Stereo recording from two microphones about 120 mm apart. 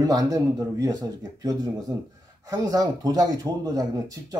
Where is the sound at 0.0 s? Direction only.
30° right (ahead or behind).